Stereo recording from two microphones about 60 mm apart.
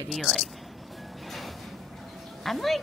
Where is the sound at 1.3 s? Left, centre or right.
Centre.